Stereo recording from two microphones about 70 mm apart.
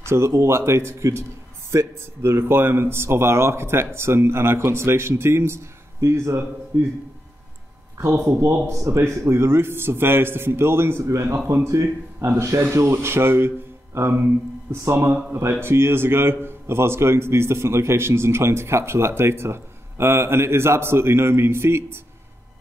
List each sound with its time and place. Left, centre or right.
0.0 s a man's voice: right
6.7 s speech: right
8.2 s a man's voice: right